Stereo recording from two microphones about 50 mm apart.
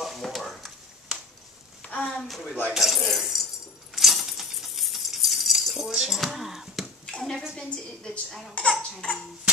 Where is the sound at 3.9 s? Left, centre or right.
Centre.